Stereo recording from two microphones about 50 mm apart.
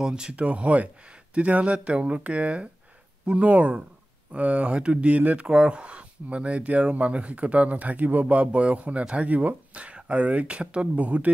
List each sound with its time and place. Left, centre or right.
0.0 s speech: centre